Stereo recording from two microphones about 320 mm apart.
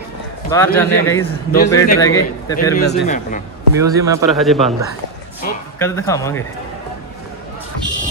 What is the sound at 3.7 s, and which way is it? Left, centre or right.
Speech, centre.